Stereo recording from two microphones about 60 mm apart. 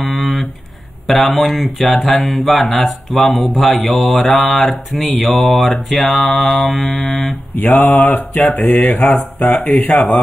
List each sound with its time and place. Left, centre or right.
0.0 s a sound: centre
1.0 s speech: centre
7.5 s mantra: left
7.8 s speech: centre
8.6 s mantra: left